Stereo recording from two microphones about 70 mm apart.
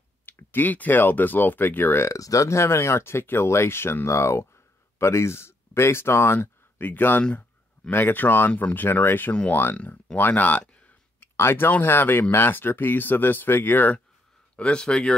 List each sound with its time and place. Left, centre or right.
0.2 s speech: left
2.0 s speech: left
7.2 s a sound: centre
7.9 s speech: left
9.3 s speech: centre
14.6 s speech: centre